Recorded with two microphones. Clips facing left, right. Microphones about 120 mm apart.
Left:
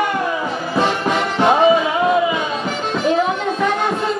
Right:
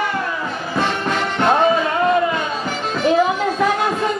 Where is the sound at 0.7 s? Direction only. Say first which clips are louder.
Left 3 dB; 5° left (ahead or behind).